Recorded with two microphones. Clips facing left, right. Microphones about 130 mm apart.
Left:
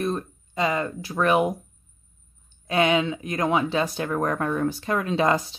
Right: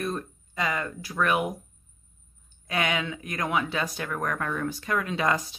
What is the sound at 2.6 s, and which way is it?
Speech, 25° left (ahead or behind).